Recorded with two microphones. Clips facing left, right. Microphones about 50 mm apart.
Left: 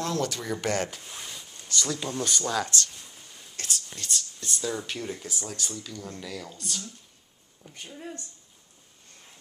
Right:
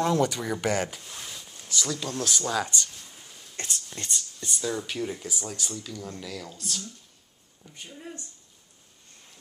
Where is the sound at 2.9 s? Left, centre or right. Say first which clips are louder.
Even; centre.